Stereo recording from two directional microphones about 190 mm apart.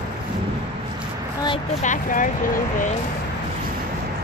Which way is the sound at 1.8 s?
45° left (ahead or behind).